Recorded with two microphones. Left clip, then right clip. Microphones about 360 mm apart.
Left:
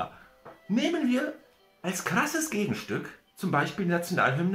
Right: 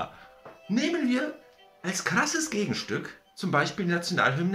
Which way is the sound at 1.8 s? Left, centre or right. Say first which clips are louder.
Right 1 dB; centre.